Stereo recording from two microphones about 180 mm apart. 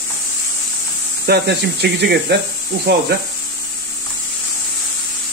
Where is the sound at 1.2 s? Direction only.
65° right (ahead or behind).